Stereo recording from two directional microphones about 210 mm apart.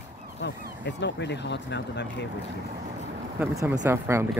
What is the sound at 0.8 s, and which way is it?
Speech, 55° left (ahead or behind).